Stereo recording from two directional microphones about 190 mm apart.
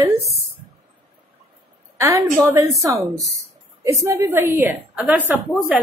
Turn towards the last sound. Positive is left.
turn(degrees=-10)  # may be behind; listen again after turning